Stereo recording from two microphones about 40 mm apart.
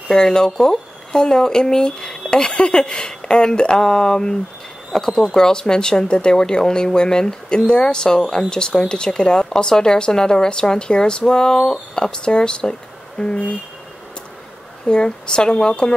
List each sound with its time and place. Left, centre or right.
0.1 s speech: centre
14.9 s speech: left